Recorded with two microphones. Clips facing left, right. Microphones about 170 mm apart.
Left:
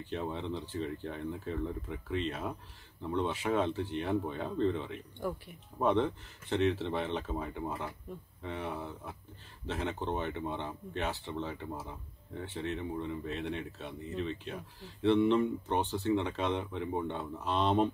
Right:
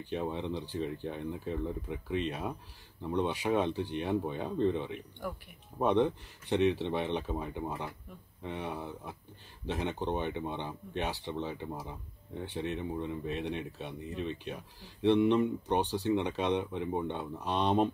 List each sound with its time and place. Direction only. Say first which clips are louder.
0.1 s speech: right 2 dB; 15° right (ahead or behind)